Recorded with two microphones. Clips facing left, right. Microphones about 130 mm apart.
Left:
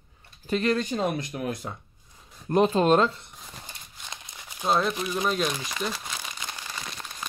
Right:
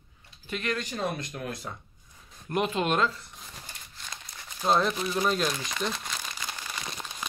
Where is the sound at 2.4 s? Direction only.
35° left (ahead or behind).